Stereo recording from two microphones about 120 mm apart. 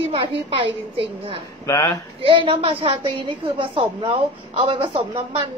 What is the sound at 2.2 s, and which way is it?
A woman's voice, 50° right (ahead or behind).